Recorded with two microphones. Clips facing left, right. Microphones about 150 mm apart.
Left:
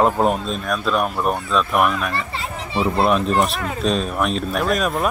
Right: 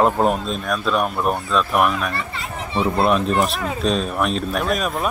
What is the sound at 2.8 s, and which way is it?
Speech, centre (ahead or behind).